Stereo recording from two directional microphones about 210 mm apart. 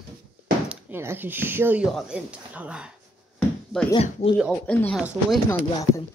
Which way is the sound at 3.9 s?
25° left (ahead or behind).